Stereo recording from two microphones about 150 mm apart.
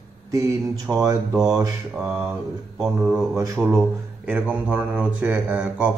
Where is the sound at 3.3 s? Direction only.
20° right (ahead or behind).